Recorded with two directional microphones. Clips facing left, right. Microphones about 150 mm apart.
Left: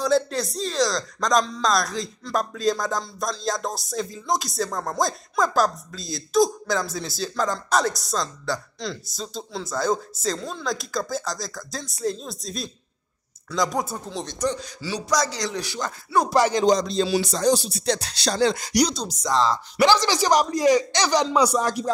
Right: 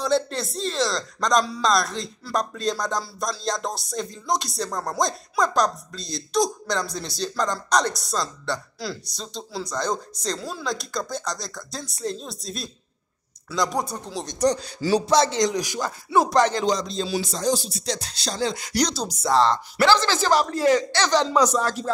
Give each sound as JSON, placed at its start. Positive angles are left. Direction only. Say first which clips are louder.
{"t": 0.0, "sound": "speech", "louder": "left 2 dB", "side_deg": 0}
{"t": 14.4, "sound": "a man's voice", "louder": "right 6 dB", "side_deg": -35}
{"t": 15.0, "sound": "speech", "louder": "right 4 dB", "side_deg": -25}
{"t": 16.2, "sound": "speech", "louder": "right 1 dB", "side_deg": 5}
{"t": 16.8, "sound": "speech", "louder": "left 4 dB", "side_deg": 70}
{"t": 18.7, "sound": "speech", "louder": "left 3 dB", "side_deg": 10}
{"t": 18.9, "sound": "speech", "louder": "right 2 dB", "side_deg": -5}
{"t": 19.8, "sound": "speech", "louder": "left 1 dB", "side_deg": 15}